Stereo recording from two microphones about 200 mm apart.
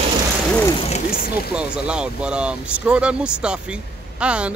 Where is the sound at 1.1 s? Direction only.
45° left (ahead or behind).